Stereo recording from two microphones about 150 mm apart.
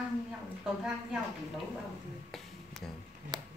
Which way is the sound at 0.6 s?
5° right (ahead or behind).